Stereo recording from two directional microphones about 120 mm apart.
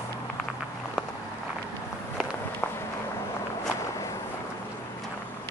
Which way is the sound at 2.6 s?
10° left (ahead or behind).